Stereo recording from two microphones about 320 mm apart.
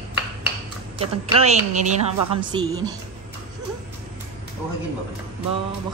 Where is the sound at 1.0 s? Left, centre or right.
Centre.